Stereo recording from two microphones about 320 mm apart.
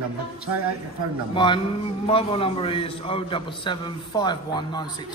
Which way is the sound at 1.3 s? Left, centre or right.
Centre.